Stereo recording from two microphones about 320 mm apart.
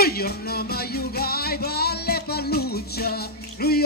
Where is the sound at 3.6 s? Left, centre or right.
Left.